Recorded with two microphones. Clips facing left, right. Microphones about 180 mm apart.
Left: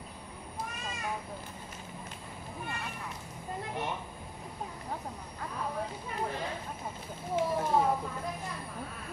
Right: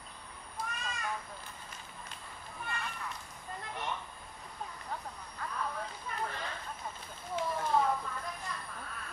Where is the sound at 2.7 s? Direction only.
15° left (ahead or behind).